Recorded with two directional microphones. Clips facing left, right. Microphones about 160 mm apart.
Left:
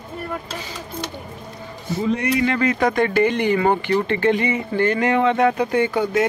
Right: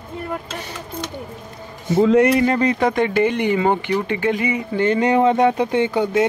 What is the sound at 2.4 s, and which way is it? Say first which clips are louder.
Speech: right 2 dB; 35° right (ahead or behind).